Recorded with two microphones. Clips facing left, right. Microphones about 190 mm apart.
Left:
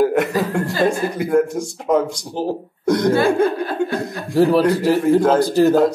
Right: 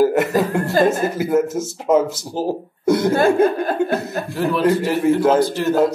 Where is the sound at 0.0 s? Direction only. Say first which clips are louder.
Right 1 dB; 5° right (ahead or behind).